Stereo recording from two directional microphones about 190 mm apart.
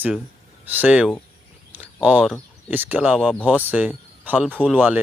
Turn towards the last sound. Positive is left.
turn(degrees=5)  # may be behind; listen again after turning